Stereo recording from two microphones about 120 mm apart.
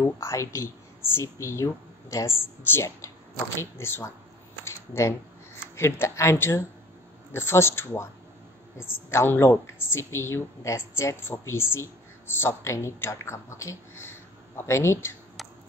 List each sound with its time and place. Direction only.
0.0 s a woman's voice: 25° left (ahead or behind)
4.6 s a sound: 25° left (ahead or behind)
5.8 s a woman's voice: 25° left (ahead or behind)
15.4 s finger snapping: centre (ahead or behind)